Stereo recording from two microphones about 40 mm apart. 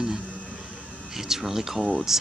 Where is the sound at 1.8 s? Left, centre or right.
Right.